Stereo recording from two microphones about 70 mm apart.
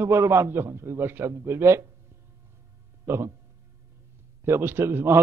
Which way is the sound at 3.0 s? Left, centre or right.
Right.